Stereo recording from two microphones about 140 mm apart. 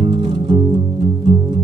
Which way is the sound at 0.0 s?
45° right (ahead or behind).